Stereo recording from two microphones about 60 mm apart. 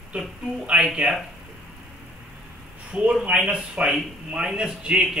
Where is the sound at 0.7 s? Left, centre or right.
Centre.